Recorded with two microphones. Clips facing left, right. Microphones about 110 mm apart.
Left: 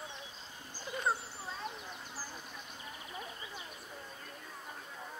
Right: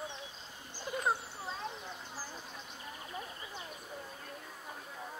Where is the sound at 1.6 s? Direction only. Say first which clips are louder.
Left 2 dB; 15° left (ahead or behind).